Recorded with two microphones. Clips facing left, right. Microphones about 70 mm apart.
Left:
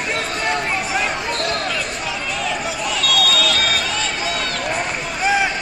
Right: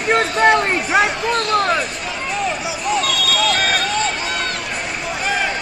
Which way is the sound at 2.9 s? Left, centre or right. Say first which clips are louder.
Right 2 dB; right.